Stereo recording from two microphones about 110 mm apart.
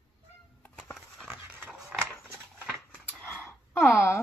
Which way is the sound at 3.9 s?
25° left (ahead or behind).